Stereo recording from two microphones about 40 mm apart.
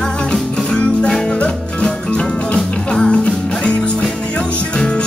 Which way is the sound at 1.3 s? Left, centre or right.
Left.